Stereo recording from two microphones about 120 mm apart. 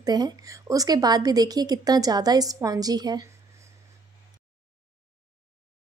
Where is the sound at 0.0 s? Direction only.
35° right (ahead or behind).